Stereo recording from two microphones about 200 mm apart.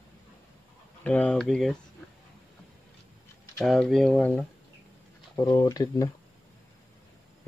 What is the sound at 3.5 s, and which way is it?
Speech, centre (ahead or behind).